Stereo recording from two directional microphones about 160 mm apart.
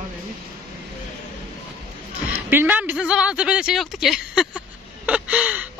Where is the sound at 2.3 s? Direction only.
15° right (ahead or behind).